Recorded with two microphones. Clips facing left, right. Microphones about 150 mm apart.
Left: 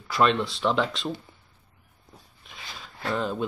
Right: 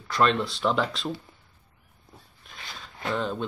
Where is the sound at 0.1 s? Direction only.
Centre (ahead or behind).